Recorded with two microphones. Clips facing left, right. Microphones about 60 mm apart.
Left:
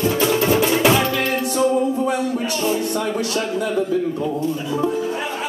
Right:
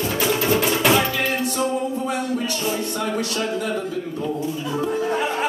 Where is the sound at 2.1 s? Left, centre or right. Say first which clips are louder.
Left 3 dB; left.